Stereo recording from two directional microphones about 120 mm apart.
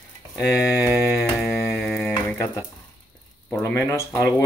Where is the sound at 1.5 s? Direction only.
25° left (ahead or behind).